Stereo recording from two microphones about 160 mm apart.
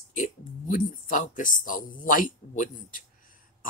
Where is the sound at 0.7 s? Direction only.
55° left (ahead or behind).